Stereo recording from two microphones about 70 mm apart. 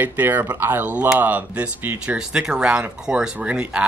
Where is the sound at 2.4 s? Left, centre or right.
Centre.